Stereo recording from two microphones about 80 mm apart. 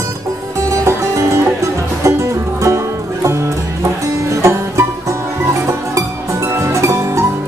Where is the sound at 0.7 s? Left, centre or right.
Right.